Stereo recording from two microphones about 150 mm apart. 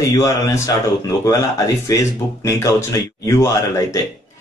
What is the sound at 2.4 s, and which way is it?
Speech, 20° left (ahead or behind).